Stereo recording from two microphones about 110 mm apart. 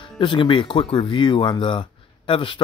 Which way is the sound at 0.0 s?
45° left (ahead or behind).